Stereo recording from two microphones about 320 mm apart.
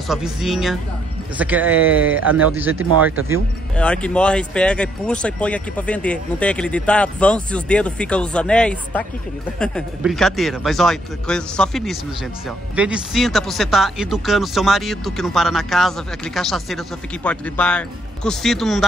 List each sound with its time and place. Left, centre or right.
0.1 s speech: centre
2.0 s speech: right
2.4 s speech: centre
2.7 s speech: right
3.7 s speech: centre